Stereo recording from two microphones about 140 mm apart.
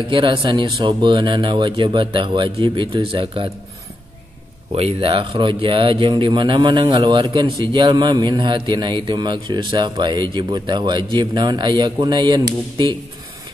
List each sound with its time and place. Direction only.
0.1 s speech: 35° right (ahead or behind)
4.7 s speech: 40° right (ahead or behind)